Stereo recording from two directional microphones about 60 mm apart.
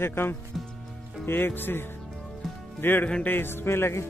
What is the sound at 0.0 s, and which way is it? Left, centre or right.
A man's voice, left.